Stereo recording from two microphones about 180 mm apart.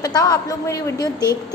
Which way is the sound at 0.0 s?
20° left (ahead or behind).